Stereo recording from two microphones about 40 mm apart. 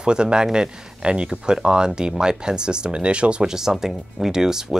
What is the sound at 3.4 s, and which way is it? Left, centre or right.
Speech, centre.